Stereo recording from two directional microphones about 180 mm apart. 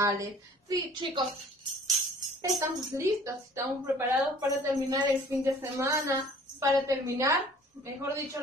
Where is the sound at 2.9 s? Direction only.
15° right (ahead or behind).